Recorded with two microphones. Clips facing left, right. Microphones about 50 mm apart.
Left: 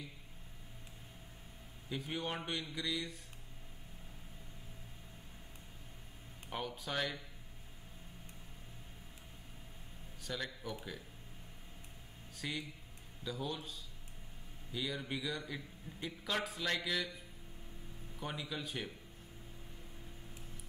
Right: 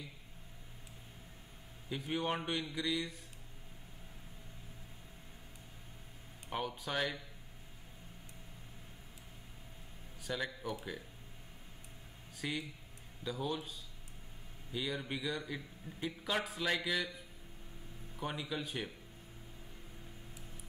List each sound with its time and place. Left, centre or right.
1.9 s a man's voice: centre
6.5 s a man's voice: centre
10.2 s speech: centre
12.4 s a man's voice: centre
18.2 s a man's voice: centre